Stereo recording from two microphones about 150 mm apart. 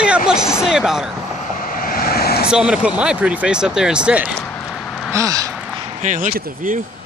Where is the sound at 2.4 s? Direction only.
5° right (ahead or behind).